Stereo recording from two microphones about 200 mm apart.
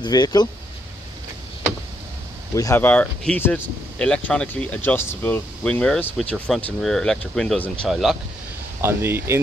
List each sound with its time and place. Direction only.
0.0 s speech: 20° left (ahead or behind)
2.5 s speech: 15° left (ahead or behind); by 9.4 s 10° right (ahead or behind)